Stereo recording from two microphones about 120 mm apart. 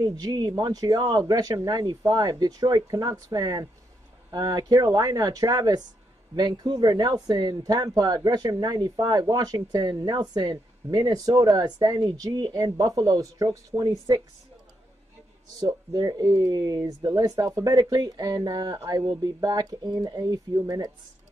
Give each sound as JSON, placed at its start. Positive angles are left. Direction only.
{"t": 0.0, "sound": "speech", "side_deg": -35}
{"t": 15.6, "sound": "speech", "side_deg": -30}